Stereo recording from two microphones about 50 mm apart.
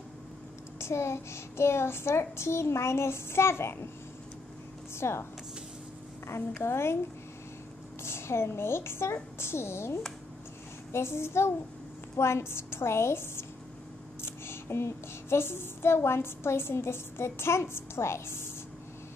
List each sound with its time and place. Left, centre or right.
0.7 s speech: left
4.9 s speech: left
6.2 s speech: left
8.0 s speech: left